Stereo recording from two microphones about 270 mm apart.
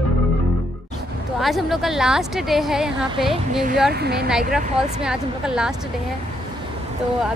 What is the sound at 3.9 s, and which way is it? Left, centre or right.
Speech, right.